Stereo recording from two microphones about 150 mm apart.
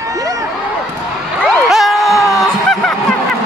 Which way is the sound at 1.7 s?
Centre (ahead or behind).